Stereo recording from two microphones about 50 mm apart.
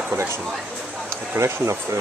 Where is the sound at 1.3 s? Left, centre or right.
Right.